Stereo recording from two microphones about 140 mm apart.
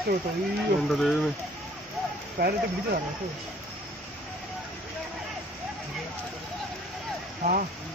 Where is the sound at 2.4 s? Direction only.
90° right.